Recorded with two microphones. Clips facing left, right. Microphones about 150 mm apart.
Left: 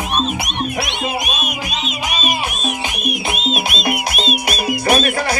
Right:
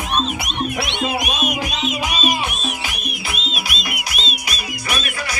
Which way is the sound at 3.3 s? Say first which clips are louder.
Left 7 dB; 45° left (ahead or behind).